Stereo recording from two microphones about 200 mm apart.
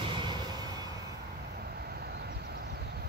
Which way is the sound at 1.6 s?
50° right (ahead or behind).